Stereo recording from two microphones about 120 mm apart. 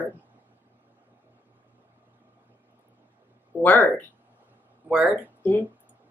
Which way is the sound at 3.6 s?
15° left (ahead or behind).